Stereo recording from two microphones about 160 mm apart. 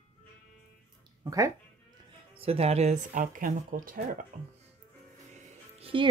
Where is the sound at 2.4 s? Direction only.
40° right (ahead or behind).